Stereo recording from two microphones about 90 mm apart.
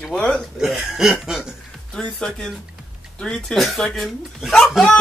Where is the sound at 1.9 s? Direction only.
5° left (ahead or behind).